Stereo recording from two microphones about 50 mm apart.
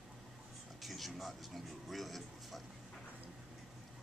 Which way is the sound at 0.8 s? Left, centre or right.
Centre.